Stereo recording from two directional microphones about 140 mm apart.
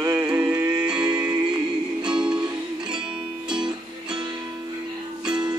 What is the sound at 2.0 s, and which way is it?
Music, 5° right (ahead or behind).